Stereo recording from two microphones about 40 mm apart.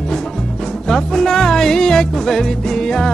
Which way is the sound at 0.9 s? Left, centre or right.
Centre.